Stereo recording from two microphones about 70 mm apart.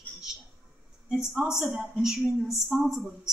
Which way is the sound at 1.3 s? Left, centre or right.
Centre.